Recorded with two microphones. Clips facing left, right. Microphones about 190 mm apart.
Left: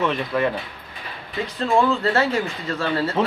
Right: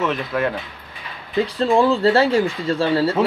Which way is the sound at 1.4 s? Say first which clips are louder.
Right 3 dB; 35° right (ahead or behind).